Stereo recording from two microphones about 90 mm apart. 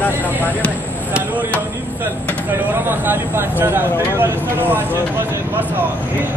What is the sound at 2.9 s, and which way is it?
Speech, 25° right (ahead or behind).